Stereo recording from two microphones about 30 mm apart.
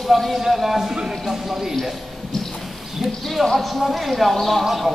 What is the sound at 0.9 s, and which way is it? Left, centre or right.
Speech, right.